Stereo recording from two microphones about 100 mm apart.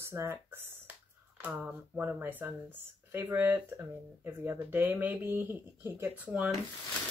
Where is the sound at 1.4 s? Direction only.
15° right (ahead or behind).